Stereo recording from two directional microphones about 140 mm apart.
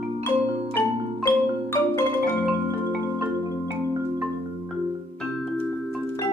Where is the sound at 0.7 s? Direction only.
20° left (ahead or behind).